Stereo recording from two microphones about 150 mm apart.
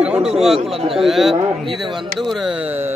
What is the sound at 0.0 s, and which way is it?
Speech, 5° right (ahead or behind).